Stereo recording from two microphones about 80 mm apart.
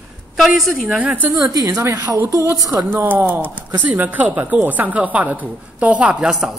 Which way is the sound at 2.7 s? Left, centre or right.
Right.